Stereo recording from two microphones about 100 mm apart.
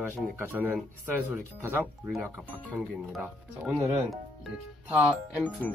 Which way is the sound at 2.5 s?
15° left (ahead or behind).